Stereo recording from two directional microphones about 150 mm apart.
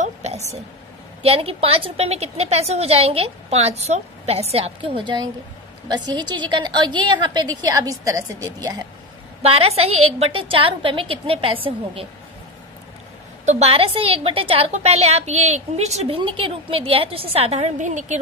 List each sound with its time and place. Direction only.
0.0 s a sound: 45° right (ahead or behind)
1.2 s a woman's voice: 40° right (ahead or behind); by 8.8 s 25° right (ahead or behind)
9.4 s a woman's voice: 40° right (ahead or behind)
13.5 s a woman's voice: 45° right (ahead or behind)
16.2 s a woman's voice: 35° right (ahead or behind); by 18.2 s 55° right (ahead or behind)